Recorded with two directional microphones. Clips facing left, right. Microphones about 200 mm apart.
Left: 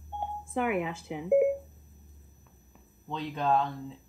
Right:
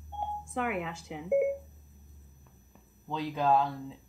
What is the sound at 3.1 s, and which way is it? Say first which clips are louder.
Speech: right 1 dB; 5° right (ahead or behind).